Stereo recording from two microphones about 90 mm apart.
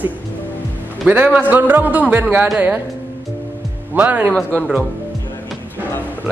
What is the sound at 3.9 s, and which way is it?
Speech, 20° right (ahead or behind).